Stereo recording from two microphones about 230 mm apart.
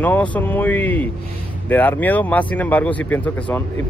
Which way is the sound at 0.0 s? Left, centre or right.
Centre.